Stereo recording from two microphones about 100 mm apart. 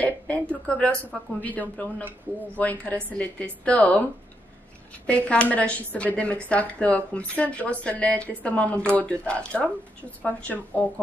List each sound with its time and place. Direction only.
0.0 s a woman's voice: 15° left (ahead or behind)
5.0 s speech: 10° left (ahead or behind)